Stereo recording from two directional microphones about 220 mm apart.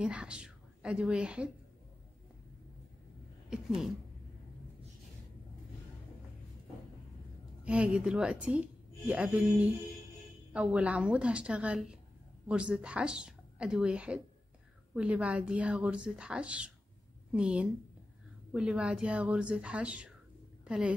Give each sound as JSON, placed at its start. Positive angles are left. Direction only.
{"t": 0.0, "sound": "a woman's voice", "side_deg": -5}
{"t": 3.4, "sound": "a sound", "side_deg": 0}
{"t": 7.6, "sound": "a woman's voice", "side_deg": -5}